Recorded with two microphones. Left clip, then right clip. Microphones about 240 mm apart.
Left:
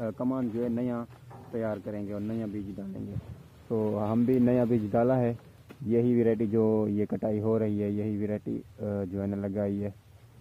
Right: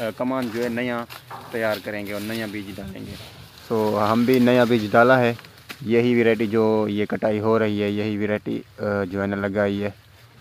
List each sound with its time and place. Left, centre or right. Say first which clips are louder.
0.0 s speech: right 7 dB; centre
3.6 s speech: right 9 dB; right